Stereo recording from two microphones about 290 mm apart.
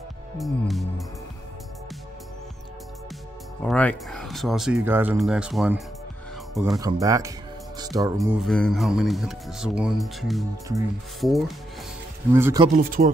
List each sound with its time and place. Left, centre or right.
0.4 s speech: centre
3.6 s speech: centre
6.8 s speech: centre
8.4 s speech: centre
12.6 s speech: right